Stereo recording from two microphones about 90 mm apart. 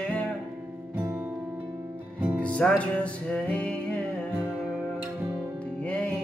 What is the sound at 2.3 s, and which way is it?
Music, 15° left (ahead or behind).